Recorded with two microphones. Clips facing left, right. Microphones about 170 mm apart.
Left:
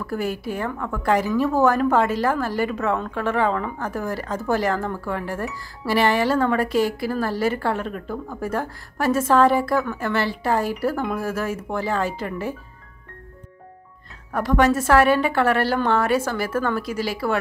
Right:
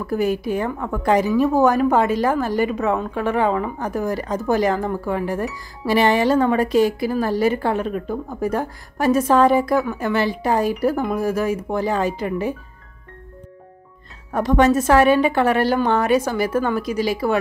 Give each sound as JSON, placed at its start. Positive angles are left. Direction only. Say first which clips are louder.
{"t": 0.0, "sound": "a woman's voice", "louder": "right 5 dB", "side_deg": -20}
{"t": 14.3, "sound": "a woman's voice", "louder": "right 3 dB", "side_deg": -20}